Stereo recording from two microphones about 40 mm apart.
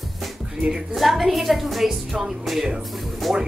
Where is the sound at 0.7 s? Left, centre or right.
Centre.